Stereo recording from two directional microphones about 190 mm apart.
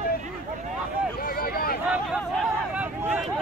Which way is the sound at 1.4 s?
50° left (ahead or behind).